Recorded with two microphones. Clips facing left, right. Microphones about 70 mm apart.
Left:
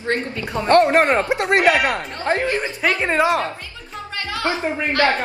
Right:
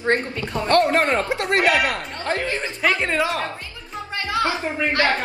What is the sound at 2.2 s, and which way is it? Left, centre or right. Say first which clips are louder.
Speech: left 4 dB; left.